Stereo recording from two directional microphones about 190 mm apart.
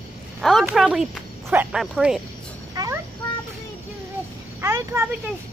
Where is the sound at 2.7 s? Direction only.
20° right (ahead or behind).